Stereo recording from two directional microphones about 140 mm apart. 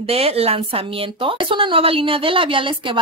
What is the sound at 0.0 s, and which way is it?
A woman's voice, 45° right (ahead or behind).